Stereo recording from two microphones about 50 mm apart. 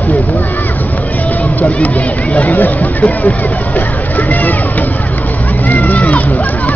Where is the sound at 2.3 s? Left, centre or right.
Left.